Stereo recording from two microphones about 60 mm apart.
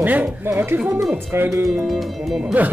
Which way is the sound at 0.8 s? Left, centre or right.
Centre.